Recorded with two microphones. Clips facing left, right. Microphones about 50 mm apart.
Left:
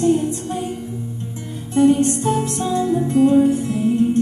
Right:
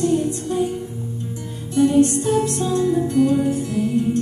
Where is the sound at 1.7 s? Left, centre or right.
Left.